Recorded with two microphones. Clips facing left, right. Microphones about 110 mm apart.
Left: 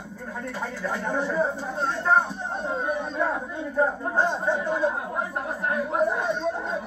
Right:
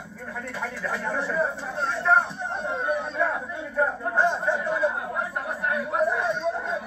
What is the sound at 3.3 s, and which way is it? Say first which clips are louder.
Speech: left 1 dB; 25° left (ahead or behind).